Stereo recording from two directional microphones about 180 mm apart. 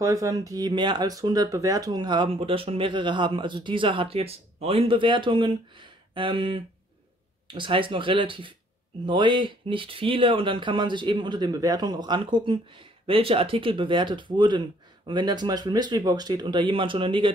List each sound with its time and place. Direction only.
0.0 s speech: 15° right (ahead or behind)